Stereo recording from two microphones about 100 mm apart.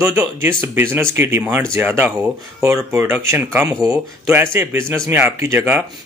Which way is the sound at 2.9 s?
20° right (ahead or behind).